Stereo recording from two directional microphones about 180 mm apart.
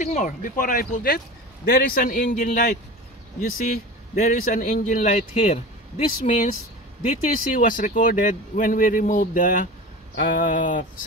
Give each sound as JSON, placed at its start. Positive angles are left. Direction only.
{"t": 0.0, "sound": "a man's voice", "side_deg": 45}
{"t": 7.5, "sound": "a man's voice", "side_deg": 50}